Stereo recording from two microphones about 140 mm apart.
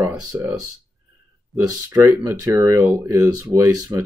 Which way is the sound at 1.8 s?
20° right (ahead or behind).